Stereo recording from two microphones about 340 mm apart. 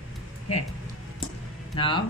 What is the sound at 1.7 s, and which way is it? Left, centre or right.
Speech, centre.